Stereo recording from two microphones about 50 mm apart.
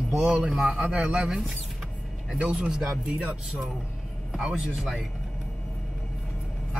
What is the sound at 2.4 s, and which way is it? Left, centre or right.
Speech, right.